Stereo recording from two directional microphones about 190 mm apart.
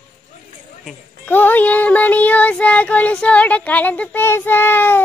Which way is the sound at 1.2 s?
10° left (ahead or behind).